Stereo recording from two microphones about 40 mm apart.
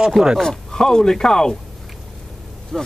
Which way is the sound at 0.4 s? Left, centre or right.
Centre.